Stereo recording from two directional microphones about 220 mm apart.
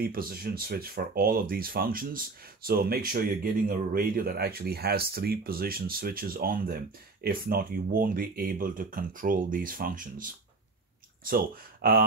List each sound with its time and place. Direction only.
0.0 s speech: 40° right (ahead or behind)